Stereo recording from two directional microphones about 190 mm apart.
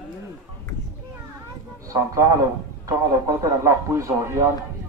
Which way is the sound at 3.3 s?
15° right (ahead or behind).